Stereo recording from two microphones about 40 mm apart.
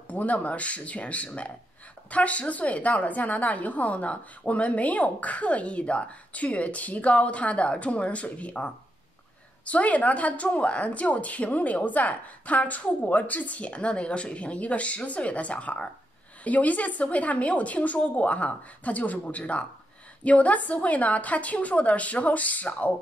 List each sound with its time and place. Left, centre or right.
0.1 s a woman's voice: left